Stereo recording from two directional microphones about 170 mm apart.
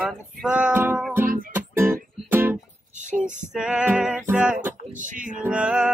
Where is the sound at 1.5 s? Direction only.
15° right (ahead or behind).